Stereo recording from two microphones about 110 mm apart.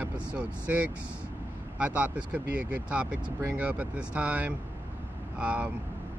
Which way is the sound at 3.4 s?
15° right (ahead or behind).